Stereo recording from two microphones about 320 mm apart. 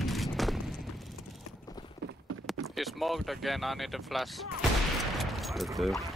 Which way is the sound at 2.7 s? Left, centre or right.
Centre.